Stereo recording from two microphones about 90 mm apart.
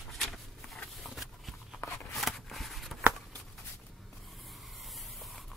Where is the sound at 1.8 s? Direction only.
35° left (ahead or behind).